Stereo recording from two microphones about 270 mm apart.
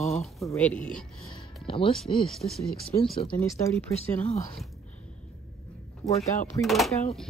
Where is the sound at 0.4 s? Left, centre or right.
Centre.